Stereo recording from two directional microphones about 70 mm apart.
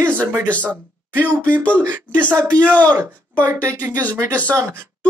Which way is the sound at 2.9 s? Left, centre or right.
Right.